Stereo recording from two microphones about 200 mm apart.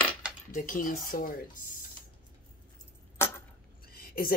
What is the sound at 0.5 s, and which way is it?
Speech, 45° left (ahead or behind).